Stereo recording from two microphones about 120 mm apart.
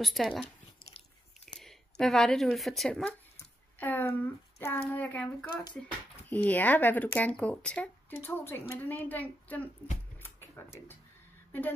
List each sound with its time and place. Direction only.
0.0 s speech: centre (ahead or behind)
1.6 s speech: 5° left (ahead or behind)
3.8 s speech: 15° left (ahead or behind)
10.2 s music: 20° left (ahead or behind)